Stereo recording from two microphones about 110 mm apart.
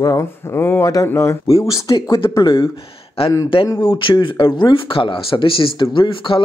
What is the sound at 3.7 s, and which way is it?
Speech, 40° left (ahead or behind).